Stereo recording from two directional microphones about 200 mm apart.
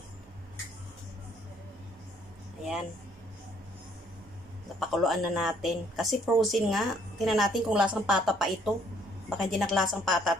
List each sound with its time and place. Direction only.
2.6 s speech: centre (ahead or behind)
4.7 s speech: centre (ahead or behind)